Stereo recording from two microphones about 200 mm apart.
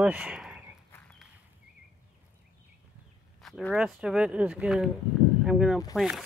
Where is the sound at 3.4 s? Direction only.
Centre (ahead or behind).